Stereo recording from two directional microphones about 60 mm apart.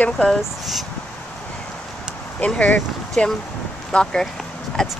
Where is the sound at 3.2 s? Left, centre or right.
Centre.